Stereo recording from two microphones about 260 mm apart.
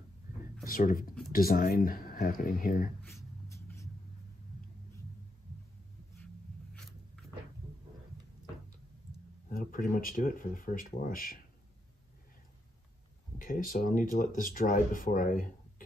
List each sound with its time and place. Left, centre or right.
0.7 s speech: left
3.0 s writing: centre
6.7 s a sound: centre
9.5 s speech: left
13.4 s speech: left